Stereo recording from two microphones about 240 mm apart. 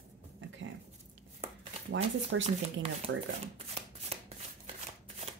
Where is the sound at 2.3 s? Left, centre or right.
Right.